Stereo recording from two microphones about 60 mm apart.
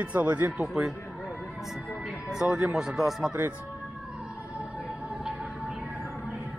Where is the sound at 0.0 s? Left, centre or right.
Right.